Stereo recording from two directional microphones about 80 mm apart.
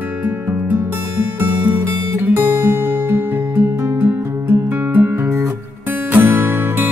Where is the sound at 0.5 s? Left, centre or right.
Right.